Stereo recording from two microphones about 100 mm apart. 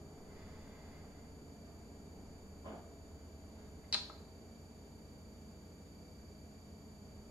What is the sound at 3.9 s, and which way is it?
Finger snapping, 15° right (ahead or behind).